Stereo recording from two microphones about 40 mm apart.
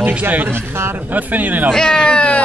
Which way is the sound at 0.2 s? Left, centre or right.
Right.